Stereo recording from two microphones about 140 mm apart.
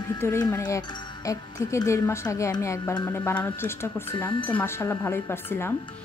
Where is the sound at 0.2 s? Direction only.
15° left (ahead or behind).